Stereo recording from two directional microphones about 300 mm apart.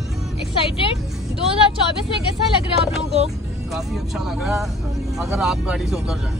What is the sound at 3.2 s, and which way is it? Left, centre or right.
Speech, centre.